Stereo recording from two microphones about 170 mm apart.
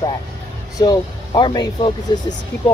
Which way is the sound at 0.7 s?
20° left (ahead or behind).